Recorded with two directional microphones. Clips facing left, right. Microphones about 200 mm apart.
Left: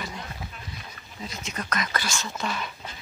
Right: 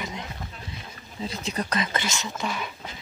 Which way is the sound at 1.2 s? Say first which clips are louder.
Right 4 dB; 35° right (ahead or behind).